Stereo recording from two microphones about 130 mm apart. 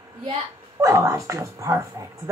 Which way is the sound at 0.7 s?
20° right (ahead or behind).